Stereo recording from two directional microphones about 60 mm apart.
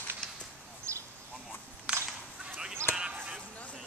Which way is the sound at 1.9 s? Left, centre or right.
Centre.